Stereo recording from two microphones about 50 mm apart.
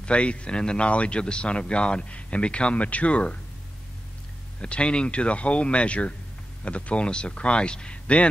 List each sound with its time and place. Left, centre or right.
0.0 s speech: left
4.6 s speech: left